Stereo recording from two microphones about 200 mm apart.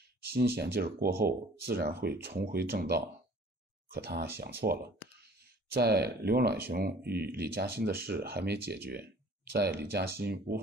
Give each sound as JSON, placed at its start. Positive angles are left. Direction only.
{"t": 0.2, "sound": "speech", "side_deg": -50}